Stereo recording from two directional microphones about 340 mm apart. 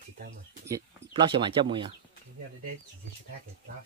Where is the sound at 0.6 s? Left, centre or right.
Centre.